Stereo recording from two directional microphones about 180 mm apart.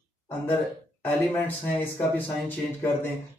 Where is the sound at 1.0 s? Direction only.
10° left (ahead or behind).